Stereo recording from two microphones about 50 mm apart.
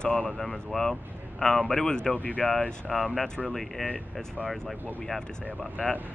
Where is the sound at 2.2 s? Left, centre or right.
Left.